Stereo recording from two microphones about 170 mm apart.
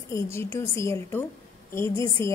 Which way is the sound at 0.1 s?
15° left (ahead or behind).